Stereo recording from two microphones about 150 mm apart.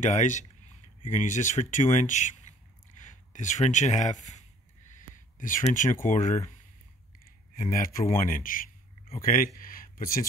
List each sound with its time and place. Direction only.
0.0 s speech: 55° left (ahead or behind)
5.6 s speech: 55° left (ahead or behind)
7.5 s speech: 65° left (ahead or behind)
8.3 s a sound: 65° left (ahead or behind)
9.2 s speech: 70° left (ahead or behind)
9.6 s a sound: 70° left (ahead or behind)